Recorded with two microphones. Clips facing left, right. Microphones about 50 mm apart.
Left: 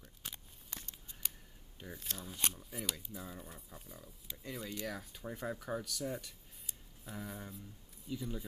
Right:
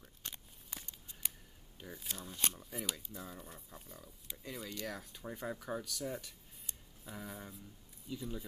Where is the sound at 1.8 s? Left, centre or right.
Centre.